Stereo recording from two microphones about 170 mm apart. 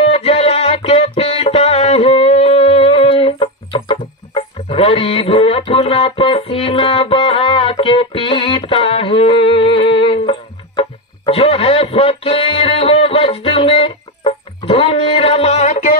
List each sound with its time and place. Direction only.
0.0 s music: 35° left (ahead or behind)